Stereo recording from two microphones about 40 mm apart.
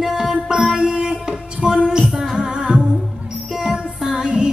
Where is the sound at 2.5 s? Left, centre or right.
Right.